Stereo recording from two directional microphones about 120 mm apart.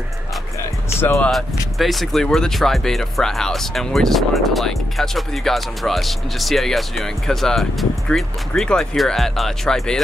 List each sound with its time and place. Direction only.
1.0 s speech: 15° left (ahead or behind)
1.8 s speech: centre (ahead or behind)